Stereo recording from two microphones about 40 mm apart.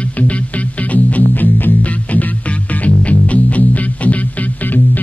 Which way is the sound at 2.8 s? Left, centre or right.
Left.